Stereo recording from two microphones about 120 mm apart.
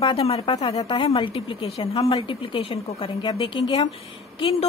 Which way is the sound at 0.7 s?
45° left (ahead or behind).